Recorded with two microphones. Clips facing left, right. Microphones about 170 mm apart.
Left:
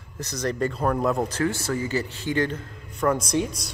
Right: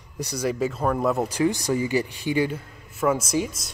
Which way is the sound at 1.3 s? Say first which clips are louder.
Right 3 dB; 15° right (ahead or behind).